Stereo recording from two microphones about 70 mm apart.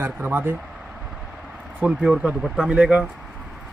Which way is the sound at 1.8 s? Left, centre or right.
Centre.